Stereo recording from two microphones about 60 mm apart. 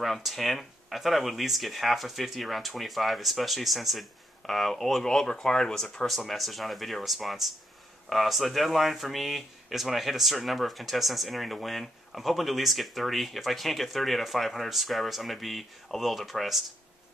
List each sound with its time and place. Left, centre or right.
0.0 s speech: centre